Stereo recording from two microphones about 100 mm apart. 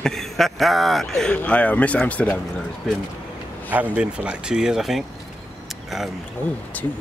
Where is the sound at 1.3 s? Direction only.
15° left (ahead or behind).